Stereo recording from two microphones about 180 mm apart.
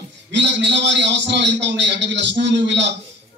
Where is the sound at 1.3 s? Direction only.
75° right (ahead or behind).